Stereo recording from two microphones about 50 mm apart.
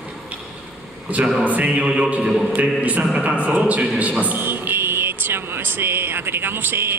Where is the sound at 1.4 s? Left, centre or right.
Right.